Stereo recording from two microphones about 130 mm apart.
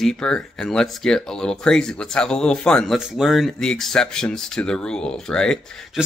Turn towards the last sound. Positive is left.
turn(degrees=5)  # may be behind; listen again after turning